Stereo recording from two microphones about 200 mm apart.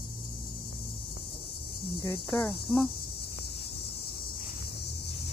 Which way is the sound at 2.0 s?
10° left (ahead or behind).